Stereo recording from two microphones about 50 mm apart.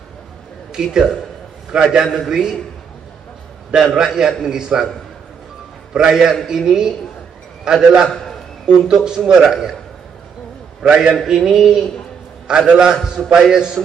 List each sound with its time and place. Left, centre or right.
0.7 s a man's voice: centre
3.7 s a man's voice: centre
5.9 s a man's voice: centre
8.1 s a sound: centre
8.7 s a man's voice: centre
10.8 s a man's voice: centre